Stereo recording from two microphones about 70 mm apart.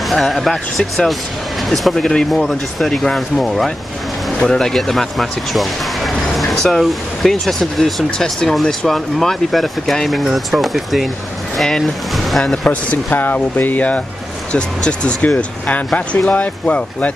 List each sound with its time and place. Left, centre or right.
0.0 s speech: centre
12.6 s speech: centre